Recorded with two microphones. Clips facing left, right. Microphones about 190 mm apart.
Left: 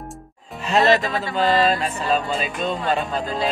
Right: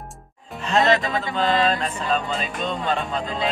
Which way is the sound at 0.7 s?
5° left (ahead or behind).